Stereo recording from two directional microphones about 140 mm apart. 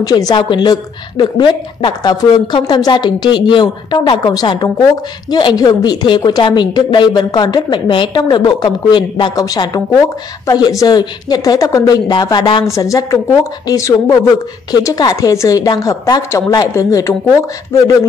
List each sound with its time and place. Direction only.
0.0 s a woman's voice: 30° left (ahead or behind)
12.6 s a woman's voice: 20° left (ahead or behind)